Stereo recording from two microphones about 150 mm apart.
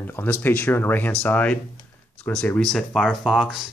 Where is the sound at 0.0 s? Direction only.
15° left (ahead or behind).